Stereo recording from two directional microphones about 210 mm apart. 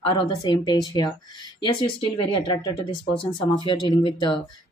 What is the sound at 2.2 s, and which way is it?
Speech, 20° left (ahead or behind).